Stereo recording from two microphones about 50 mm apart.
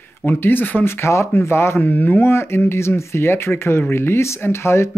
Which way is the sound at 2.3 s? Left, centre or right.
Left.